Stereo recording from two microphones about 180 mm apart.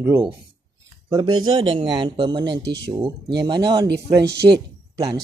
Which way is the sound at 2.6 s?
70° right (ahead or behind).